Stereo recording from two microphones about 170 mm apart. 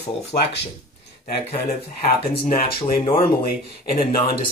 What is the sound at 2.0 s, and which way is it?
Speech, 55° left (ahead or behind).